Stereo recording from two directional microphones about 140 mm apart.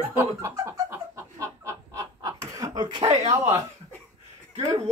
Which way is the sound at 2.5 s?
25° right (ahead or behind).